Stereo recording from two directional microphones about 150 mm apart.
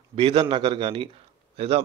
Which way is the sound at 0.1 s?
40° right (ahead or behind).